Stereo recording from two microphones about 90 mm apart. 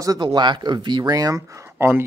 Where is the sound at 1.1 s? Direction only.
40° right (ahead or behind).